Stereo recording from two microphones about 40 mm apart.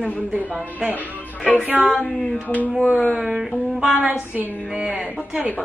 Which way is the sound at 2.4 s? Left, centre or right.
Left.